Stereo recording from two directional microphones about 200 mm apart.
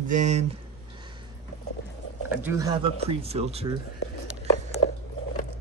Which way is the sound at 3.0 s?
30° right (ahead or behind).